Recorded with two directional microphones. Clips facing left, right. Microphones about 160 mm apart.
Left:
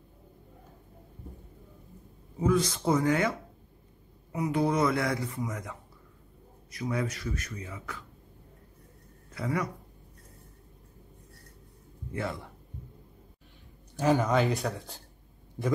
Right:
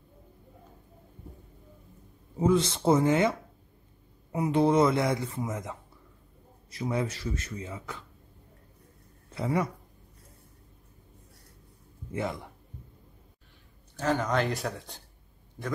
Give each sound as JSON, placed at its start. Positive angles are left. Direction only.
{"t": 2.3, "sound": "speech", "side_deg": -25}
{"t": 9.3, "sound": "speech", "side_deg": -25}
{"t": 12.1, "sound": "speech", "side_deg": -20}
{"t": 13.9, "sound": "speech", "side_deg": 10}